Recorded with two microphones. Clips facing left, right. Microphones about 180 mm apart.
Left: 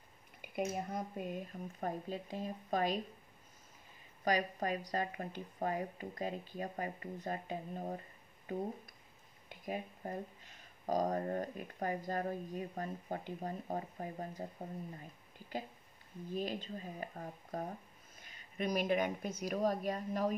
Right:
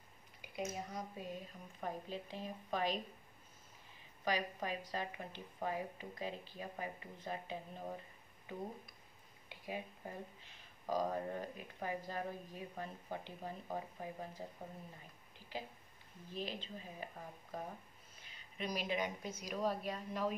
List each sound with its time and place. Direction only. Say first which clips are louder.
0.4 s speech: left 5 dB; 55° left (ahead or behind)
4.2 s speech: left 4 dB; 45° left (ahead or behind)
9.5 s speech: left 4 dB; 45° left (ahead or behind)
16.3 s speech: left 5 dB; 45° left (ahead or behind)